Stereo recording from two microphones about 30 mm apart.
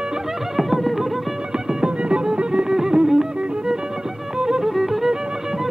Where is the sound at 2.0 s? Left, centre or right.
Right.